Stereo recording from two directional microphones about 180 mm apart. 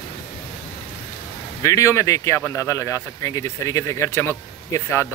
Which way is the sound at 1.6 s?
15° left (ahead or behind).